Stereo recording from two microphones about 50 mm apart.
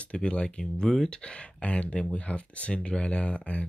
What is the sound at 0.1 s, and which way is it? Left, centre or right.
Speech, left.